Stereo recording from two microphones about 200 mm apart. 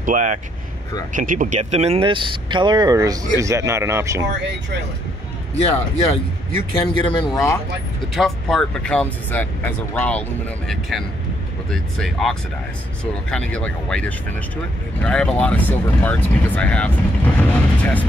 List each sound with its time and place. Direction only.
0.0 s speech: 40° right (ahead or behind); by 4.3 s 15° right (ahead or behind)
6.8 s speech: 25° left (ahead or behind)
8.1 s speech: centre (ahead or behind)